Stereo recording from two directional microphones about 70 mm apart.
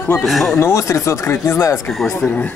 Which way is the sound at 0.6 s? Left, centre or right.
Left.